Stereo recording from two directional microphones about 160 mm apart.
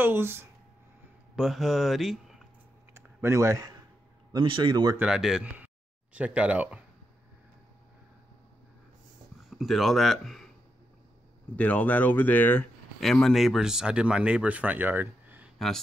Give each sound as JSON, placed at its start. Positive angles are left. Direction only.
{"t": 0.0, "sound": "speech", "side_deg": -15}
{"t": 1.3, "sound": "speech", "side_deg": 0}
{"t": 2.9, "sound": "a sound", "side_deg": -15}
{"t": 4.3, "sound": "speech", "side_deg": -30}
{"t": 4.9, "sound": "speech", "side_deg": -5}
{"t": 9.5, "sound": "speech", "side_deg": 0}
{"t": 11.5, "sound": "speech", "side_deg": 10}